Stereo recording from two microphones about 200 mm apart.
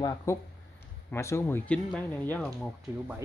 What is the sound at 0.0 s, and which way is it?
Speech, 15° left (ahead or behind).